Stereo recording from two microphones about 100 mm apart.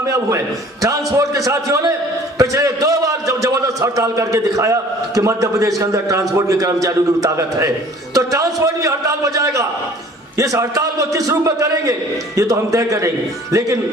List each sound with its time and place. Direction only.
0.0 s a man's voice: 30° right (ahead or behind)